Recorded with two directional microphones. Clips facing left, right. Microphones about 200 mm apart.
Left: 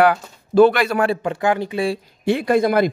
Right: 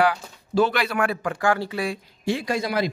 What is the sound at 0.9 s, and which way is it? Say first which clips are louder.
Speech: left 5 dB; 30° left (ahead or behind).